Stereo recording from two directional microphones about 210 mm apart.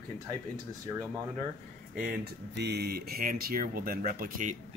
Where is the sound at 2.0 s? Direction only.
45° right (ahead or behind).